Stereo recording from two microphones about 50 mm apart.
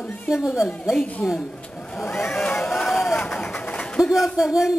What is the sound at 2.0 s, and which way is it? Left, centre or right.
Speech, left.